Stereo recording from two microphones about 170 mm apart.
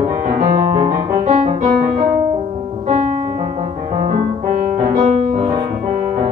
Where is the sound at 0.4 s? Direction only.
40° right (ahead or behind).